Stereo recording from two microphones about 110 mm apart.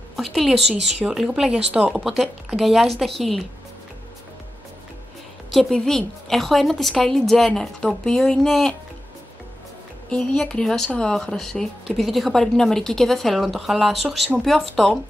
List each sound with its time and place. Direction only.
0.1 s a woman's voice: centre (ahead or behind)
0.6 s speech: 75° right (ahead or behind)
1.0 s speech: 5° right (ahead or behind)
2.0 s speech: centre (ahead or behind)
5.5 s speech: centre (ahead or behind)
10.0 s speech: 5° left (ahead or behind)